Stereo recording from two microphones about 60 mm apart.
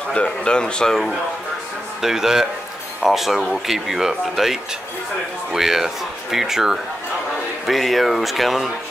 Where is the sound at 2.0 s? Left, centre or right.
Centre.